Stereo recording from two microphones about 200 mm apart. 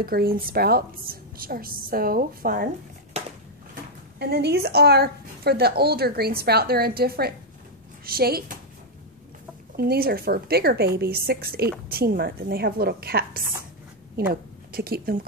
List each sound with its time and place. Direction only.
0.0 s a woman's voice: 50° right (ahead or behind)
4.2 s a woman's voice: 55° right (ahead or behind)
9.8 s a woman's voice: 50° right (ahead or behind)